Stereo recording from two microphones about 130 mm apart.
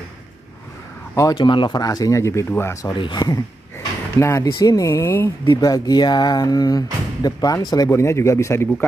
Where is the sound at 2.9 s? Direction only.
35° left (ahead or behind).